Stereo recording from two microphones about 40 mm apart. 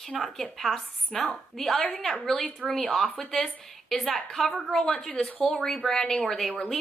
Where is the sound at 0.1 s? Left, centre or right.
Centre.